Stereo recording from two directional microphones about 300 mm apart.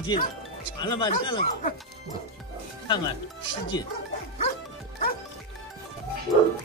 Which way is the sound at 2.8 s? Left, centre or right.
Centre.